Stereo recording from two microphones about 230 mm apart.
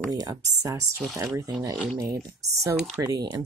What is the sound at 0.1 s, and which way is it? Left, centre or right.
Speech, centre.